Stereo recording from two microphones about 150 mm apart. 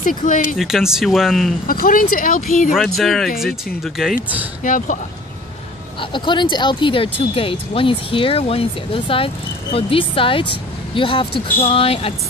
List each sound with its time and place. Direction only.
0.0 s speech: 65° left (ahead or behind)
0.6 s speech: centre (ahead or behind)
1.7 s speech: 70° left (ahead or behind)
2.7 s speech: centre (ahead or behind)
4.6 s speech: 60° left (ahead or behind)
5.9 s speech: 30° left (ahead or behind)